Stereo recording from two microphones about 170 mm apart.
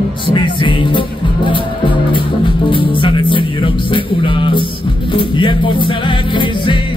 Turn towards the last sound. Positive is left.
turn(degrees=30)  # may be behind; listen again after turning